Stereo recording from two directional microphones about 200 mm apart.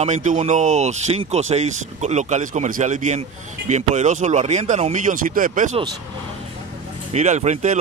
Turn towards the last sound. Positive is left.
turn(degrees=-35)  # may be behind; listen again after turning